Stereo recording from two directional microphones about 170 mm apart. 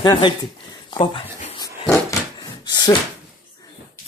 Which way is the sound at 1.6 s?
20° left (ahead or behind).